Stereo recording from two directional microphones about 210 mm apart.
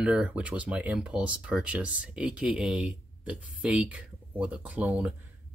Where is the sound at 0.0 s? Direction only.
5° right (ahead or behind).